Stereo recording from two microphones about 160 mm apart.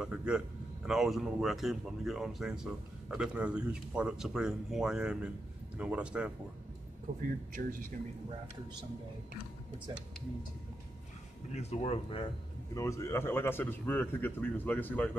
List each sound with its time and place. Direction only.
0.0 s a man's voice: 5° right (ahead or behind)
7.6 s speech: 60° right (ahead or behind)
11.5 s speech: 40° left (ahead or behind)
12.7 s speech: 20° left (ahead or behind)